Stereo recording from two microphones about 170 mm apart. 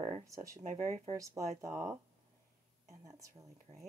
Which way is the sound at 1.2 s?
20° right (ahead or behind).